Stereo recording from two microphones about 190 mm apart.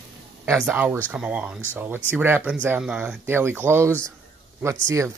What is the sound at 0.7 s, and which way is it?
Speech, 10° right (ahead or behind).